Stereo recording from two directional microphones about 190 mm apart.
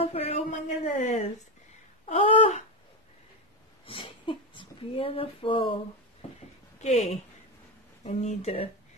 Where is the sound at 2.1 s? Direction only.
35° left (ahead or behind).